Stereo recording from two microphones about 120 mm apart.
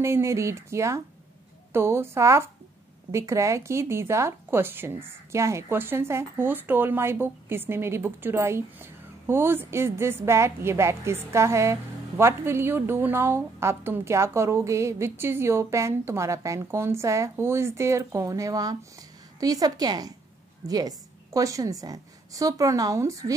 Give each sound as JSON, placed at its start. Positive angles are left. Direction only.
{"t": 0.0, "sound": "a woman's voice", "side_deg": -20}